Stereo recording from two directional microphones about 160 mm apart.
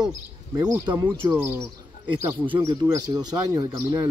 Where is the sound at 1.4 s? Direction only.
15° right (ahead or behind).